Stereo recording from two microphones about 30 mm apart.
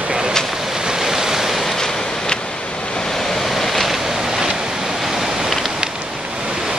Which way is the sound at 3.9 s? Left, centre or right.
Centre.